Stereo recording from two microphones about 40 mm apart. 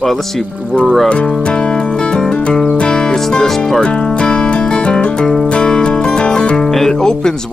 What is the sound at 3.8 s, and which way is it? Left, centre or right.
Music, left.